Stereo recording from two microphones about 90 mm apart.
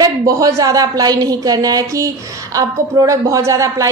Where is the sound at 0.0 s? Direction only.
40° right (ahead or behind).